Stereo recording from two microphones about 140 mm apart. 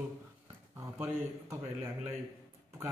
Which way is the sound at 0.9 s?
15° right (ahead or behind).